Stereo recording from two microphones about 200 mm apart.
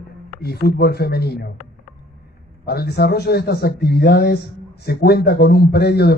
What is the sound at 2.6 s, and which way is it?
A man's voice, 50° left (ahead or behind).